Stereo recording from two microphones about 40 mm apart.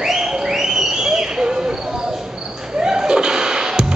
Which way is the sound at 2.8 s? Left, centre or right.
Centre.